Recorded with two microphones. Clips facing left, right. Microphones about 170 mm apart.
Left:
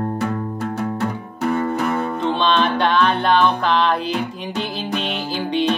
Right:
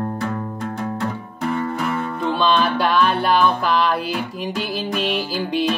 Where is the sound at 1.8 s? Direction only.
45° left (ahead or behind).